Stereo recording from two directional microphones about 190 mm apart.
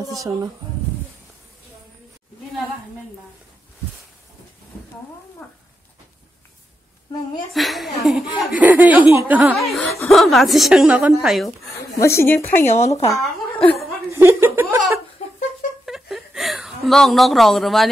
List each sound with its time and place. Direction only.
0.0 s speech: 20° right (ahead or behind)
5.4 s a sound: 5° left (ahead or behind)
7.5 s a woman's voice: centre (ahead or behind)
12.0 s a woman's voice: 15° left (ahead or behind)
12.6 s speech: 35° left (ahead or behind)
14.1 s chuckle: 15° right (ahead or behind)
15.8 s a sound: centre (ahead or behind)